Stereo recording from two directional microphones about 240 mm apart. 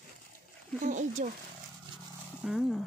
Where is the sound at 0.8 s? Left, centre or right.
Right.